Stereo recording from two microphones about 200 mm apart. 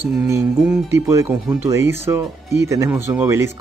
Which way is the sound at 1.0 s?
15° right (ahead or behind).